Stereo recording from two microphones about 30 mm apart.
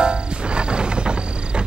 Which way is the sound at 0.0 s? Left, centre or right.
Right.